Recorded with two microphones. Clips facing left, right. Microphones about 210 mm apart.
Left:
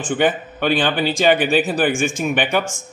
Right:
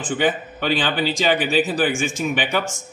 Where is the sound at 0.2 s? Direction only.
55° left (ahead or behind).